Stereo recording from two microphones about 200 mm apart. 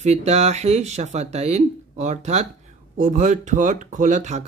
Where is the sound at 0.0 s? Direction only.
35° right (ahead or behind).